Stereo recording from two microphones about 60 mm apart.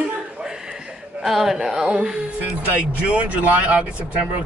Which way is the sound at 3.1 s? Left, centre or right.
Right.